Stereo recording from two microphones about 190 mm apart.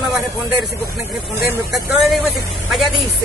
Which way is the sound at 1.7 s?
Centre (ahead or behind).